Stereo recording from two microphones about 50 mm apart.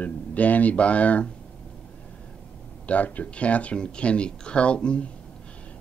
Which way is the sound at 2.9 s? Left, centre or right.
Left.